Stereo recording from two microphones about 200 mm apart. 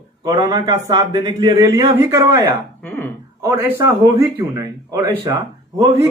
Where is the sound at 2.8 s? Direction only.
10° left (ahead or behind).